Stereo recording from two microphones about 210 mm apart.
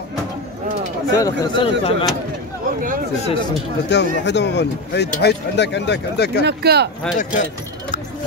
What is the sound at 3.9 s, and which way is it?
Speech, 55° left (ahead or behind).